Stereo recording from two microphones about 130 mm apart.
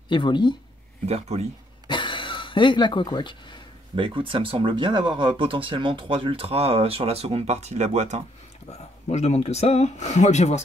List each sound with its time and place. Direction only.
0.1 s speech: 35° left (ahead or behind)
1.0 s speech: 55° right (ahead or behind)
1.9 s speech: 40° left (ahead or behind)
3.9 s speech: 40° right (ahead or behind); by 8.2 s 60° right (ahead or behind)
8.6 s speech: 60° left (ahead or behind)